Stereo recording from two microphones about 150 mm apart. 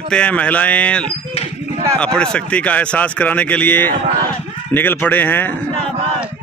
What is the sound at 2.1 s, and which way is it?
Speech, 5° left (ahead or behind).